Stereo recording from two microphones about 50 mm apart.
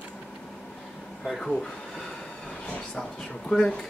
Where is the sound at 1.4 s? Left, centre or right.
Centre.